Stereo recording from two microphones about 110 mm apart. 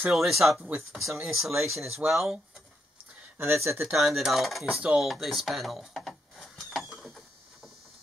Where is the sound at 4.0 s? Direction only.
Centre (ahead or behind).